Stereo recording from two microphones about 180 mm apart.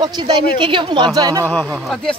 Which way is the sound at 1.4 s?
10° left (ahead or behind).